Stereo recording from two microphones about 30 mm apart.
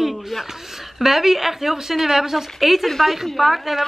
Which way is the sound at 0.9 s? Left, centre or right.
Centre.